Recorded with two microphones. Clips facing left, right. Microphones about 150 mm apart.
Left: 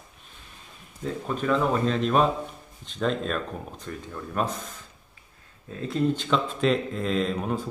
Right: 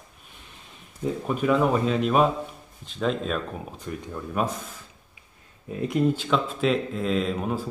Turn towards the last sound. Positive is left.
turn(degrees=-5)  # may be behind; listen again after turning